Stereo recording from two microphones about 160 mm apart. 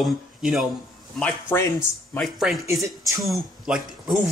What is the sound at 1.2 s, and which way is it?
Speech, 15° left (ahead or behind).